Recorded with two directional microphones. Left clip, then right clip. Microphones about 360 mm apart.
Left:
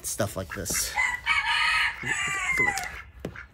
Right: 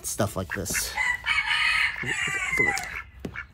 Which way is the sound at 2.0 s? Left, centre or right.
Centre.